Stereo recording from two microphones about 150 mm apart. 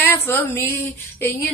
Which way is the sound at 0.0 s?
15° left (ahead or behind).